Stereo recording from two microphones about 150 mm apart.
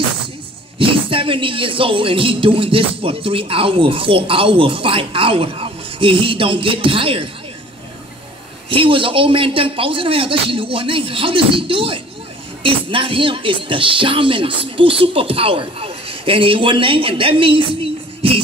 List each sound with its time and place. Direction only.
0.7 s a man's voice: 35° right (ahead or behind)
8.6 s a man's voice: 35° right (ahead or behind)